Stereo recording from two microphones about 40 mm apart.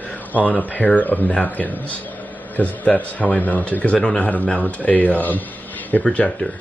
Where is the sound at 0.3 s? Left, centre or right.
Left.